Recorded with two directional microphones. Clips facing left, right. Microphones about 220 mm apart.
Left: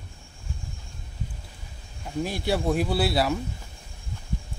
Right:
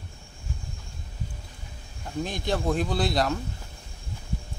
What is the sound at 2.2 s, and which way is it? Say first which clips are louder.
Speech: left 2 dB; 10° left (ahead or behind).